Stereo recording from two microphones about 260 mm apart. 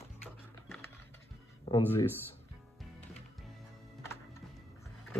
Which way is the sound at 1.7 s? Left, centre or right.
Centre.